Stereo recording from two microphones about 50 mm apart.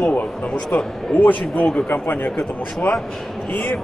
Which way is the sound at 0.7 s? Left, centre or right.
Left.